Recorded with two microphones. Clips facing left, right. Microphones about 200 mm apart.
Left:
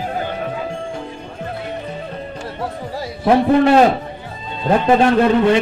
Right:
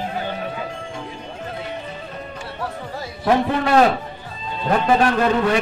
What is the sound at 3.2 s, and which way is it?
A man's voice, 25° left (ahead or behind).